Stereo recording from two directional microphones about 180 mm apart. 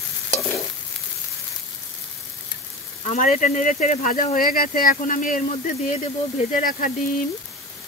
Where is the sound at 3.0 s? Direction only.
45° left (ahead or behind).